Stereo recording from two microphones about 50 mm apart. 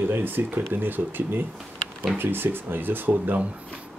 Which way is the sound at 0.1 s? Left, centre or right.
Right.